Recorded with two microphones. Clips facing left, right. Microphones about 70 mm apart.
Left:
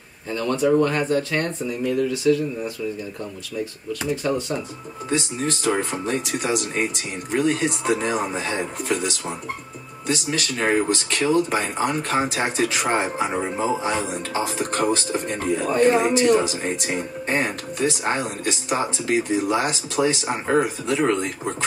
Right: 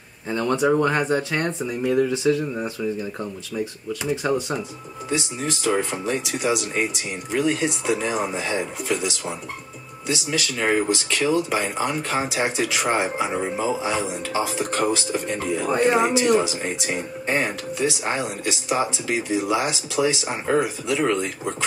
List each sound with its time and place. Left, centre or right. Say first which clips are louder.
0.3 s speech: even; right
4.2 s speech: right 2 dB; centre
5.1 s speech: left 2 dB; left